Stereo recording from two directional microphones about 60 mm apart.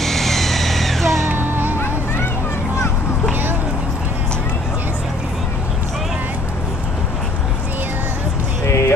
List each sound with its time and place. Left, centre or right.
0.0 s music: centre
1.3 s music: right
8.6 s a sound: left